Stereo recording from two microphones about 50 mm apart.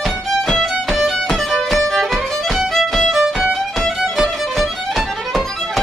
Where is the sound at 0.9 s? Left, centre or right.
Centre.